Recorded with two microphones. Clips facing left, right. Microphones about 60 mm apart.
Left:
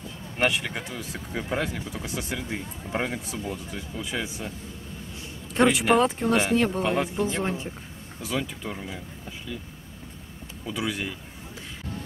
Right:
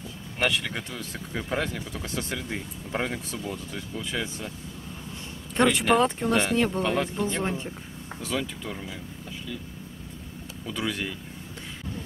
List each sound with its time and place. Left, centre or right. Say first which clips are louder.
0.4 s speech: left 1 dB; centre
5.5 s speech: left 1 dB; centre
10.6 s speech: left 1 dB; centre